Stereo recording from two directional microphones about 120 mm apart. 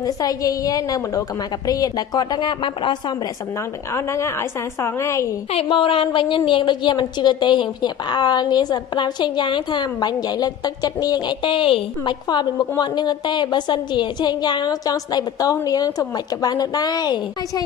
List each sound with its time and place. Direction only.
0.0 s a woman's voice: 30° left (ahead or behind)
3.9 s a woman's voice: 25° left (ahead or behind)
5.5 s a woman's voice: 50° left (ahead or behind); by 17.2 s 35° left (ahead or behind)